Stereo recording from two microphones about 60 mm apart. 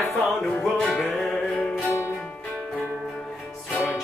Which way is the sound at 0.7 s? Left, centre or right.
Centre.